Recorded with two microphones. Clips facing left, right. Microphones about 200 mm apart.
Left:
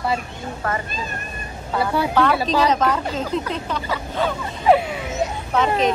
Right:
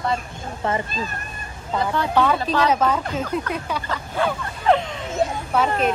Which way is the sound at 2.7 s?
10° right (ahead or behind).